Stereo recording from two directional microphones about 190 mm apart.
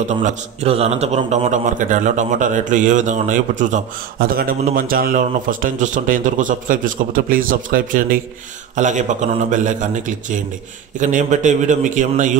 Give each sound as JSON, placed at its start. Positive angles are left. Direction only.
{"t": 0.0, "sound": "a man's voice", "side_deg": -40}